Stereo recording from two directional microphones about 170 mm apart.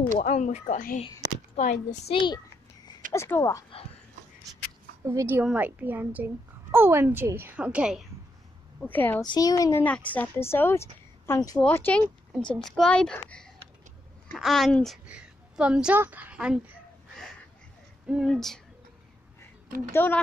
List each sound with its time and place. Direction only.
0.2 s speech: 45° left (ahead or behind)
2.1 s a child's voice: 25° left (ahead or behind)
3.1 s speech: 15° left (ahead or behind)
5.0 s a woman's voice: 15° right (ahead or behind)
8.8 s speech: 10° left (ahead or behind)
9.2 s a woman's voice: 25° left (ahead or behind); by 16.7 s 5° right (ahead or behind)
18.0 s speech: 5° right (ahead or behind)
19.9 s speech: 10° left (ahead or behind)